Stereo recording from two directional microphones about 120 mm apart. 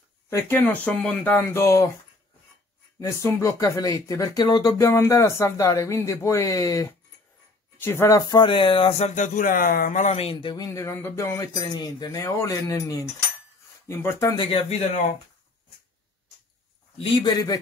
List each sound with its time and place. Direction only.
0.3 s speech: 25° left (ahead or behind)
0.8 s speech: 10° left (ahead or behind)
3.0 s speech: 25° left (ahead or behind)
8.3 s speech: 40° left (ahead or behind)
9.0 s speech: 90° left
9.8 s speech: 80° left; by 10.3 s 65° left (ahead or behind)
10.3 s a man's voice: 40° left (ahead or behind)
10.7 s speech: 20° left (ahead or behind)
11.3 s speech: 30° left (ahead or behind)
14.3 s a man's voice: 40° left (ahead or behind)
17.0 s a man's voice: 40° left (ahead or behind)